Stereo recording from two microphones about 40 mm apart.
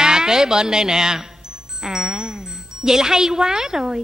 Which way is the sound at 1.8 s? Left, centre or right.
Centre.